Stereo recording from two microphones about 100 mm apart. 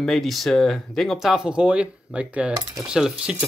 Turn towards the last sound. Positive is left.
turn(degrees=-5)  # may be behind; listen again after turning